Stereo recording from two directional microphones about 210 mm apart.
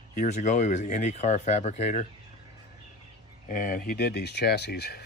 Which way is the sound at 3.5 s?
40° left (ahead or behind).